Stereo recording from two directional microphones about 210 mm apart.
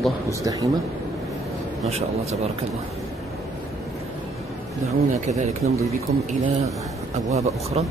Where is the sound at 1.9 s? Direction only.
30° right (ahead or behind).